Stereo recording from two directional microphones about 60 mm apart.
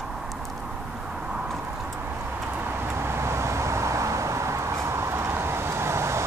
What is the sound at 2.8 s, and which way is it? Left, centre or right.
Vehicle, right.